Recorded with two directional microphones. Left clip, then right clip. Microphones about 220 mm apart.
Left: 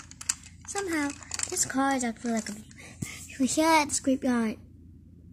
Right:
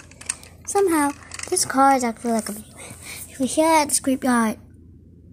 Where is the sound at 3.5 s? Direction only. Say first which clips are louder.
Right 6 dB; 15° left (ahead or behind).